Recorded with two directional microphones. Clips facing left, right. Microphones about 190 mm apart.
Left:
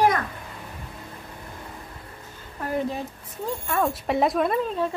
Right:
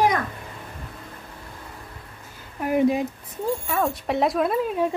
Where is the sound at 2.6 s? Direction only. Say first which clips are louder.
Right 7 dB; 15° right (ahead or behind).